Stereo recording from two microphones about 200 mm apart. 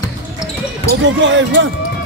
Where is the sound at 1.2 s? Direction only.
65° right (ahead or behind).